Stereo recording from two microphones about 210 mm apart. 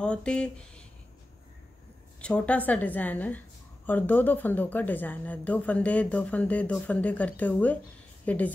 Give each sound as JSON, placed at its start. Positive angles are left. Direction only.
{"t": 0.0, "sound": "speech", "side_deg": 5}
{"t": 2.1, "sound": "a woman's voice", "side_deg": 5}